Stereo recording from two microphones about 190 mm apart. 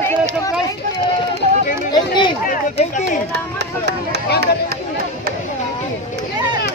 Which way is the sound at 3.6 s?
60° right (ahead or behind).